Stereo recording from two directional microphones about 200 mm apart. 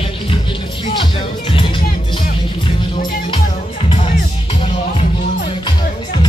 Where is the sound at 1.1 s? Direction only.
25° left (ahead or behind).